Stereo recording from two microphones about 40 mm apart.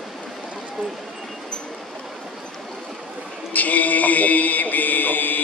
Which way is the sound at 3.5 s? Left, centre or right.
Left.